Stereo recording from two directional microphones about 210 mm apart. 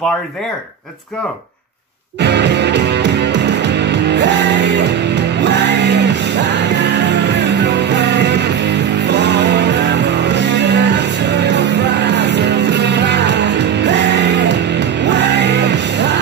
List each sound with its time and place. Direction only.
2.2 s music: 55° right (ahead or behind)